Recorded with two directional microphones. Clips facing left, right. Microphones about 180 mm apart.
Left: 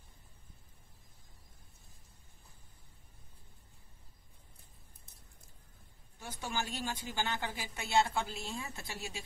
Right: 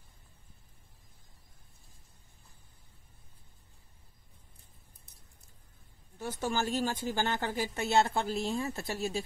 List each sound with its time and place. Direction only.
6.1 s a woman's voice: 40° right (ahead or behind)
8.6 s a woman's voice: 40° right (ahead or behind)